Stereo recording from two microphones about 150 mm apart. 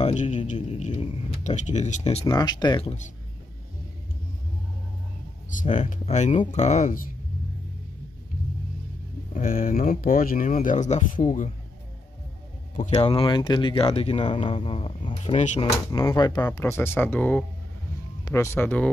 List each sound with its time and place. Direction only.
0.0 s speech: 55° left (ahead or behind)
2.2 s speech: 30° left (ahead or behind)
5.5 s speech: 60° left (ahead or behind)
9.3 s speech: 65° left (ahead or behind)
12.7 s speech: 40° left (ahead or behind)
16.2 s speech: 25° left (ahead or behind)